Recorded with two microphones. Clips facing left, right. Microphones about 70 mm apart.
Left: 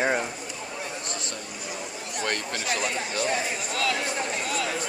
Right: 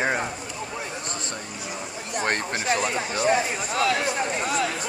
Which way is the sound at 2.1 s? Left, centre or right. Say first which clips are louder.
Right 4 dB; right.